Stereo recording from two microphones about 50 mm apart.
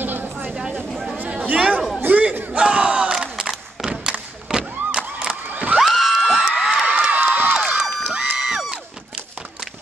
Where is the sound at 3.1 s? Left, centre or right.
Centre.